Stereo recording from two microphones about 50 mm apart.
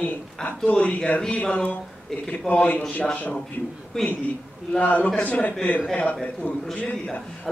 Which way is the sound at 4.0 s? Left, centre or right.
Centre.